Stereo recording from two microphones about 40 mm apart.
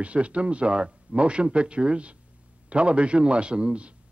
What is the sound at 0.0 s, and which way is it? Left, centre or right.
A man's voice, right.